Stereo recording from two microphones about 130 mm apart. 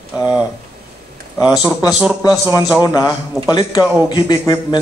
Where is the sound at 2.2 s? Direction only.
30° left (ahead or behind).